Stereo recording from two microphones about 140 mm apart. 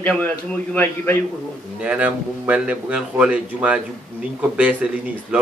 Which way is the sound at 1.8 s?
10° right (ahead or behind).